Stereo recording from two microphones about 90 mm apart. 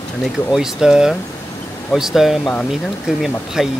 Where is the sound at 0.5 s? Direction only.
5° right (ahead or behind).